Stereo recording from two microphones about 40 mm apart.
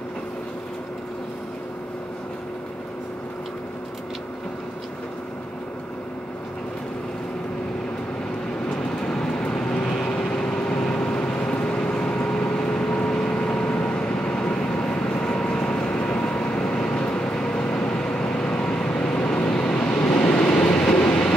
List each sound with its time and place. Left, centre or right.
9.0 s vehicle: centre
20.8 s train: left